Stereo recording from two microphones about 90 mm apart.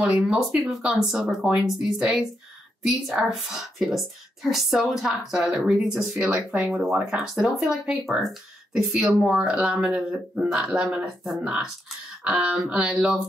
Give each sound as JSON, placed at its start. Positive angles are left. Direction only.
{"t": 0.0, "sound": "a woman's voice", "side_deg": -5}
{"t": 6.5, "sound": "speech", "side_deg": -15}
{"t": 6.8, "sound": "a woman's voice", "side_deg": -5}